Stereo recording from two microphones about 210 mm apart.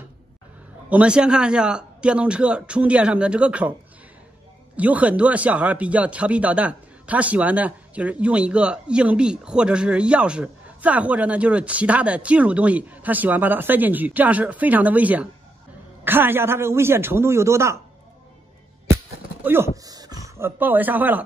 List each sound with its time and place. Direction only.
0.8 s speech: 5° right (ahead or behind)
4.7 s speech: 5° right (ahead or behind)
19.4 s speech: 10° right (ahead or behind)
19.8 s a sound: 20° right (ahead or behind)
20.2 s speech: 10° right (ahead or behind)